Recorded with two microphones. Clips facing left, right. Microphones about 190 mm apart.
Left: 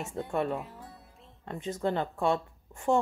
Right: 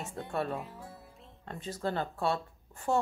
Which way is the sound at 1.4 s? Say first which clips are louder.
Left 4 dB; 20° left (ahead or behind).